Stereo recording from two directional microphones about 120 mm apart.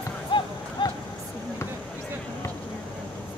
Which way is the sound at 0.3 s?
45° left (ahead or behind).